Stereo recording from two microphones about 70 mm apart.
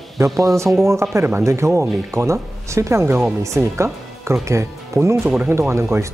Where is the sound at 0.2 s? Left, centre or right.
Right.